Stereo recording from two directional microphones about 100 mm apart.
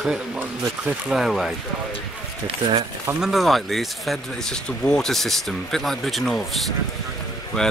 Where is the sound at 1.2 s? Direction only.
Centre (ahead or behind).